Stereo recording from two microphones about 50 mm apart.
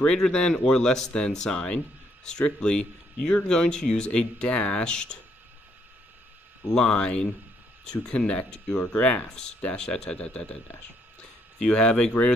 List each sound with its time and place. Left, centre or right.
0.0 s speech: centre
6.7 s speech: centre
11.6 s speech: centre